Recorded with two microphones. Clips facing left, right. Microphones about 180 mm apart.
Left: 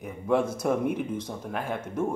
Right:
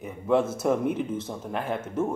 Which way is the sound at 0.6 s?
10° left (ahead or behind).